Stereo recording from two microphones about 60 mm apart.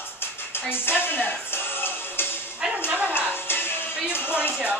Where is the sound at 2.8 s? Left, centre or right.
Right.